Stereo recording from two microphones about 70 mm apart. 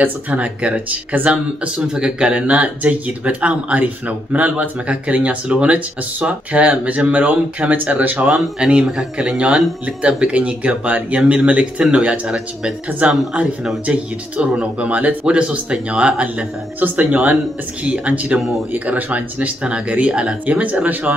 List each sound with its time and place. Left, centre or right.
0.0 s speech: right